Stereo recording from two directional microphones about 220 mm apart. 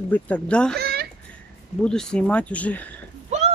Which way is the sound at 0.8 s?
45° right (ahead or behind).